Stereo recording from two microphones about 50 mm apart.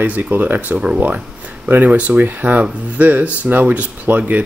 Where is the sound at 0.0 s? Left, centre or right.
Right.